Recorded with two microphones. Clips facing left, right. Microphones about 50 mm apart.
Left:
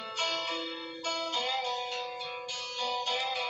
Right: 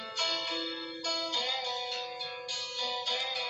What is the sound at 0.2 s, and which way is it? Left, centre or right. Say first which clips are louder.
Change ringing: left 1 dB; left.